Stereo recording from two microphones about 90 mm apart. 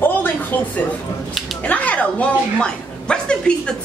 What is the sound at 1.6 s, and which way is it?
A woman's voice, 15° left (ahead or behind).